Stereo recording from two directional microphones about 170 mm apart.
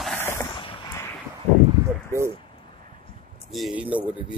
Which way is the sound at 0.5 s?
30° left (ahead or behind).